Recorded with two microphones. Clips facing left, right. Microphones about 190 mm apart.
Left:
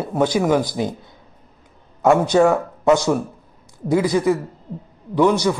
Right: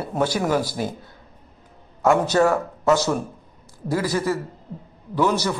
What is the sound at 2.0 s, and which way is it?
A man's voice, 15° left (ahead or behind).